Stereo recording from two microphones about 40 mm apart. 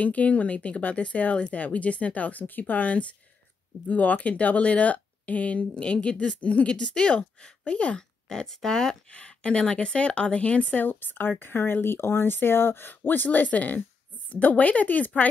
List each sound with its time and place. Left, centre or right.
0.0 s speech: left
6.7 s a woman's voice: left
8.3 s speech: centre
9.1 s speech: left